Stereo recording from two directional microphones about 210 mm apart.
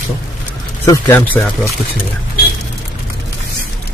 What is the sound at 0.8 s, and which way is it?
Speech, 15° left (ahead or behind).